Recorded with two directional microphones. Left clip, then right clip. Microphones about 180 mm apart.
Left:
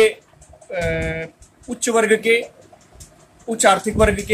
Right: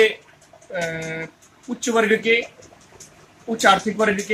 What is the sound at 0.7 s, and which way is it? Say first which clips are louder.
Speech: left 4 dB; 35° left (ahead or behind).